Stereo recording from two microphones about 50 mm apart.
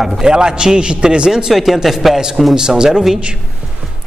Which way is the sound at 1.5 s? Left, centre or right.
Centre.